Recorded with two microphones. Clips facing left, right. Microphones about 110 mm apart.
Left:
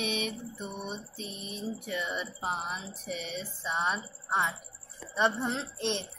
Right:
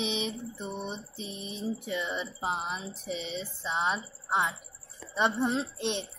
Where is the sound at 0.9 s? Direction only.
20° right (ahead or behind).